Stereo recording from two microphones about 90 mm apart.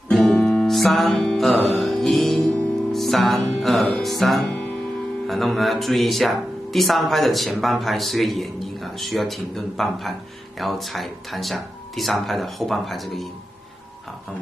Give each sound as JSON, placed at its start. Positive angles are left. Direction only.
{"t": 0.1, "sound": "music", "side_deg": 0}
{"t": 5.2, "sound": "speech", "side_deg": 0}